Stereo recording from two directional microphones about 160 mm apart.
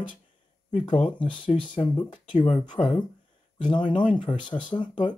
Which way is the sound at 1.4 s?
30° left (ahead or behind).